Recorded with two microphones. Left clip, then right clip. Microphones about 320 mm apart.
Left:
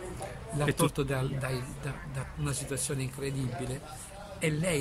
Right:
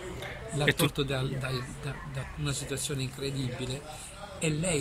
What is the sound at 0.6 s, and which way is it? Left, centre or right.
A man's voice, centre.